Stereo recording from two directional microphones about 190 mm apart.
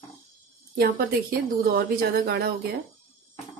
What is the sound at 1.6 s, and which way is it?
Speech, 50° right (ahead or behind).